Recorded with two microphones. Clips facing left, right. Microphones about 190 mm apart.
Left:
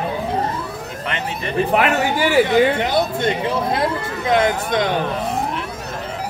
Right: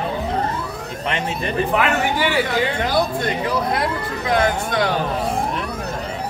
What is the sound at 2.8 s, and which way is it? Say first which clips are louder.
Speech: left 1 dB; 25° left (ahead or behind).